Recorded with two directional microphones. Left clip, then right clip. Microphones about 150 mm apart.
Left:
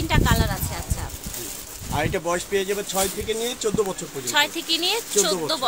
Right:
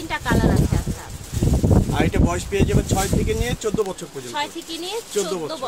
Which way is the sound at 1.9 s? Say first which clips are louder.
Right 2 dB; 10° left (ahead or behind).